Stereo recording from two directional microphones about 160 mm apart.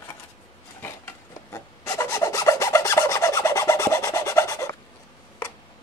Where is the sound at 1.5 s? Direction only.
15° left (ahead or behind).